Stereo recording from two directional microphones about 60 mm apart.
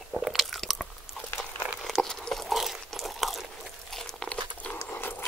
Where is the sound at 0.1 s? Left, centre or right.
Centre.